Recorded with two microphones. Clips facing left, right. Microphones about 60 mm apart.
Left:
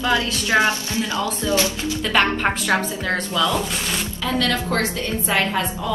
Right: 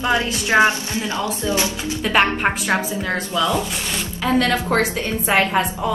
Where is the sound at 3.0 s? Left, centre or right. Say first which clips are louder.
Even; centre.